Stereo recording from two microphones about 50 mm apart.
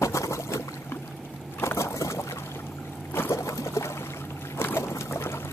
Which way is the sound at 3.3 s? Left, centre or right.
Left.